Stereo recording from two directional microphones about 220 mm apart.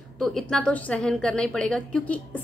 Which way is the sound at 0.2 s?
Centre (ahead or behind).